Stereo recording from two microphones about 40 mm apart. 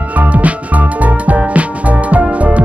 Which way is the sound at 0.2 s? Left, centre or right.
Right.